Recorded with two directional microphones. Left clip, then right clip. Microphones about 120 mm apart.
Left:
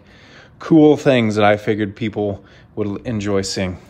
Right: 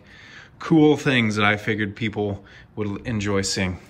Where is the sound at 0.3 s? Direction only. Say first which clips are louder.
Left 6 dB; 25° left (ahead or behind).